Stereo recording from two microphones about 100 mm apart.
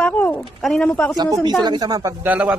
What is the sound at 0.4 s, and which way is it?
Speech, 5° left (ahead or behind).